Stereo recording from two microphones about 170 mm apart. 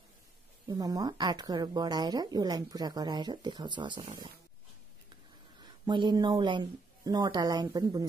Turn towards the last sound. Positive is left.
turn(degrees=-20)  # may be behind; listen again after turning